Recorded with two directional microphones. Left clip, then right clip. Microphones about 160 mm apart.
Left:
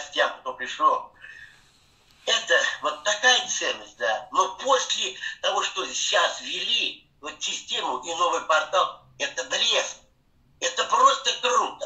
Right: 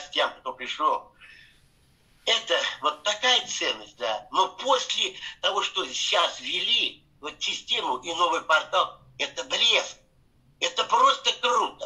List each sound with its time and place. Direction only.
0.7 s a man's voice: 30° right (ahead or behind)
2.2 s a man's voice: 30° right (ahead or behind)